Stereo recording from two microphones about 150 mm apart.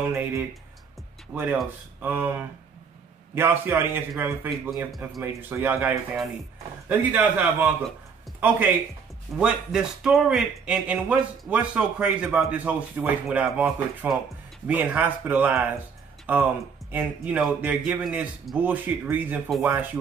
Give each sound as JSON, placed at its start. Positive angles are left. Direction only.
{"t": 0.1, "sound": "speech", "side_deg": -15}
{"t": 4.5, "sound": "speech", "side_deg": 0}
{"t": 5.2, "sound": "speech", "side_deg": -15}